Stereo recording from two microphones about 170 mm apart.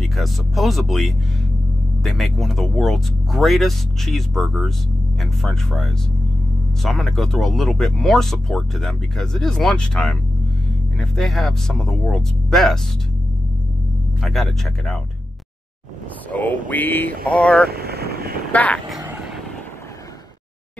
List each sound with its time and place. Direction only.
0.0 s speech: centre (ahead or behind)
14.2 s speech: centre (ahead or behind)
16.3 s speech: 10° left (ahead or behind)
17.6 s vehicle: 70° right (ahead or behind)
18.5 s speech: 10° left (ahead or behind)